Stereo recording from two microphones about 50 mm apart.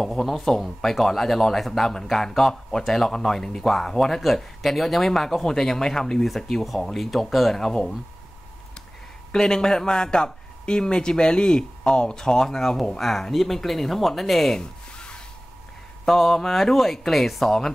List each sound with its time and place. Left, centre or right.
0.0 s speech: centre
9.3 s speech: centre
14.6 s a sound: centre
16.1 s speech: centre